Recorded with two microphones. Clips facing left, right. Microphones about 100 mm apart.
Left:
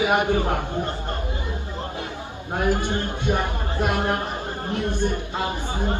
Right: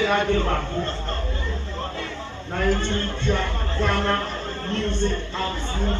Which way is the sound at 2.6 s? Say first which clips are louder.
Even; 15° left (ahead or behind).